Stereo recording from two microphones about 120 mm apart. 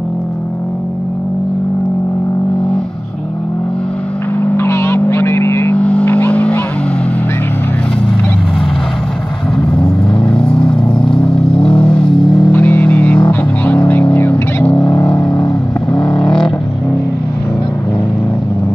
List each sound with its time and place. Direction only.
4.4 s vehicle: 20° left (ahead or behind)
5.8 s music: 10° left (ahead or behind)
10.3 s a sound: 5° left (ahead or behind)
11.1 s vehicle: 5° left (ahead or behind)
12.4 s music: 20° left (ahead or behind)
15.9 s vehicle: 5° left (ahead or behind)